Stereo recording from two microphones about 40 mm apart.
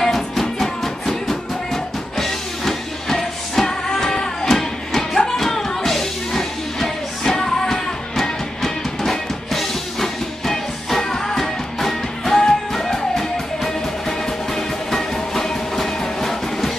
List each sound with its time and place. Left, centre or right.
0.0 s music: centre